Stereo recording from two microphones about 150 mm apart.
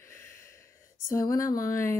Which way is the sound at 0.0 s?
20° left (ahead or behind).